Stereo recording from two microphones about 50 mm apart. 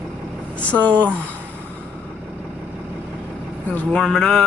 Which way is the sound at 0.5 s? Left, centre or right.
Left.